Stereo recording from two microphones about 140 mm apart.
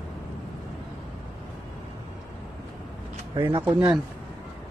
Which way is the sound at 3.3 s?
35° right (ahead or behind).